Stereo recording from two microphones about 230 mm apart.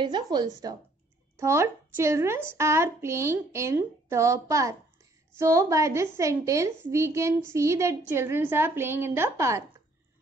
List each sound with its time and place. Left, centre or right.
0.0 s a woman's voice: centre